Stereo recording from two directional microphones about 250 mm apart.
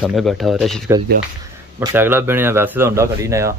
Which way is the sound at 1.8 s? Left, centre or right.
Centre.